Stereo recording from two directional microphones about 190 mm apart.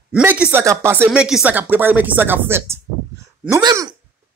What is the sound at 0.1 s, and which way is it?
Speech, 5° right (ahead or behind).